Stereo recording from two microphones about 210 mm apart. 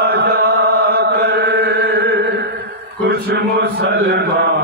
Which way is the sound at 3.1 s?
50° right (ahead or behind).